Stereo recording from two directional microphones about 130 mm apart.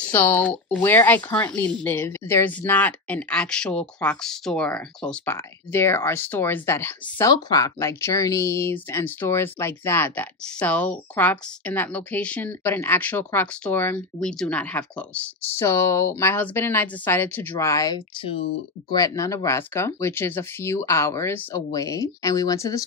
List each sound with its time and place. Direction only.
0.1 s speech: 15° left (ahead or behind)